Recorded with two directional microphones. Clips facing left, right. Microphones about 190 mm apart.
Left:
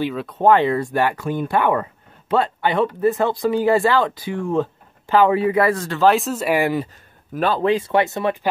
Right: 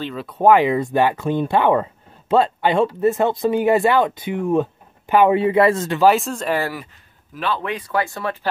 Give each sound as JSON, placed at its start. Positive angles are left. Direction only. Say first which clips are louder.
{"t": 0.1, "sound": "speech", "louder": "left 2 dB", "side_deg": 0}
{"t": 0.4, "sound": "speech", "louder": "right 1 dB", "side_deg": -10}
{"t": 6.0, "sound": "speech", "louder": "even", "side_deg": 0}
{"t": 7.3, "sound": "speech", "louder": "left 4 dB", "side_deg": 45}
{"t": 7.6, "sound": "speech", "louder": "left 6 dB", "side_deg": 25}